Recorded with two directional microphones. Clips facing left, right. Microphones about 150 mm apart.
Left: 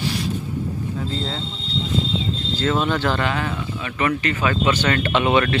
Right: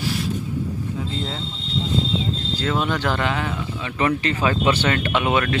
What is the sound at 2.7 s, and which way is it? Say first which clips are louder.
Speech: even; 10° right (ahead or behind).